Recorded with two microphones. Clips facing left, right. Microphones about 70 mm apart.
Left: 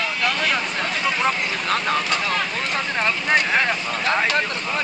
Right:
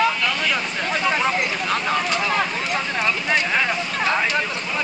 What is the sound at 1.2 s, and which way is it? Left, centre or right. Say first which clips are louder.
Speech: right 1 dB; centre.